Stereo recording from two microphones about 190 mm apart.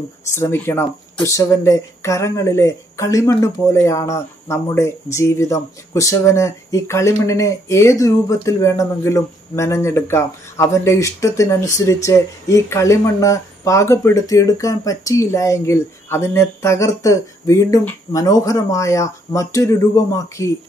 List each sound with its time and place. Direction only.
0.3 s speech: 15° left (ahead or behind)